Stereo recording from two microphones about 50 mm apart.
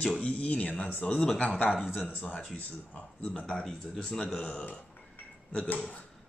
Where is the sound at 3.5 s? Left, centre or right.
Centre.